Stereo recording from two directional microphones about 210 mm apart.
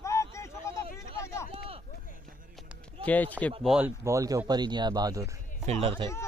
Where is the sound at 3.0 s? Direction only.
5° left (ahead or behind).